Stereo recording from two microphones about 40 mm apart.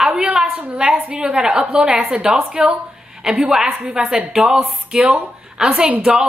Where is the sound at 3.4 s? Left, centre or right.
Centre.